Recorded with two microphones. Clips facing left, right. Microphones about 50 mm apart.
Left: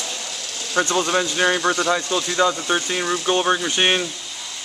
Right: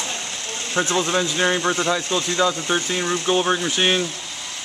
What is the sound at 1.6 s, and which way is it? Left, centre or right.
Speech, centre.